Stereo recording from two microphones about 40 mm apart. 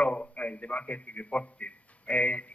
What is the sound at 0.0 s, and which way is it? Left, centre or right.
A man's voice, left.